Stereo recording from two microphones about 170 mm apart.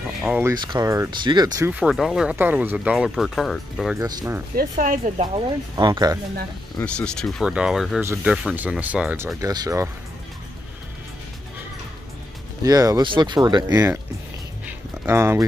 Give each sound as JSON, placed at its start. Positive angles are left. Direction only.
{"t": 0.6, "sound": "speech", "side_deg": -25}
{"t": 1.7, "sound": "speech", "side_deg": -5}
{"t": 4.0, "sound": "speech", "side_deg": -20}
{"t": 4.6, "sound": "speech", "side_deg": -55}
{"t": 5.2, "sound": "speech", "side_deg": -25}
{"t": 6.8, "sound": "speech", "side_deg": 5}
{"t": 8.0, "sound": "speech", "side_deg": -15}
{"t": 9.4, "sound": "speech", "side_deg": -20}
{"t": 12.6, "sound": "speech", "side_deg": -20}
{"t": 14.7, "sound": "a sound", "side_deg": -15}